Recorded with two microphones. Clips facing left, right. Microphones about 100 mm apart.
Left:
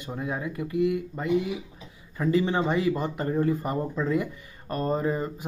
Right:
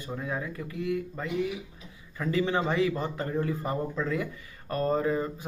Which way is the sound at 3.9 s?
20° left (ahead or behind).